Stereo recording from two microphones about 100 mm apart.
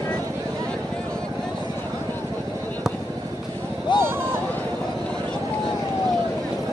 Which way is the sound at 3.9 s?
50° left (ahead or behind).